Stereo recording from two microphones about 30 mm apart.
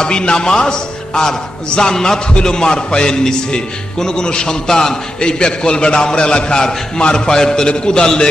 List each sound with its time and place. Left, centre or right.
0.0 s a man's voice: left